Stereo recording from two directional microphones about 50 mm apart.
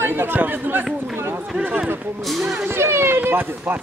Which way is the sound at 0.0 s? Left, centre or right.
Right.